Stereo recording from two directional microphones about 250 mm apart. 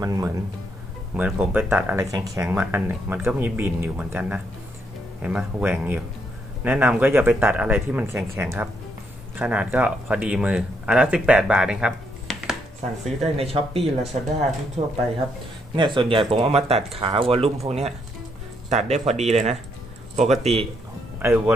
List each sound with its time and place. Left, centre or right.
0.0 s speech: centre
13.0 s speech: right
13.7 s speech: centre
14.8 s speech: right
21.2 s speech: centre